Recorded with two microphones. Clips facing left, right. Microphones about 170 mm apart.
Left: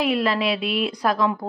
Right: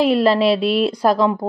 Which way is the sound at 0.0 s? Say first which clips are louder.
Right 7 dB; 35° right (ahead or behind).